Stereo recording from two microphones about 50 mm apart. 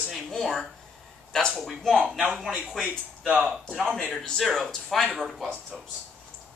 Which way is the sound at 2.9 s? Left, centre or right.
Right.